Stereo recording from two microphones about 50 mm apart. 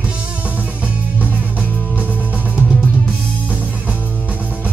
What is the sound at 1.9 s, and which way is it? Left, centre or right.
Music, right.